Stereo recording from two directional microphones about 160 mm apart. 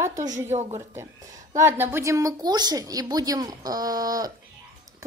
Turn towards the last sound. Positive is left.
turn(degrees=-25)  # may be behind; listen again after turning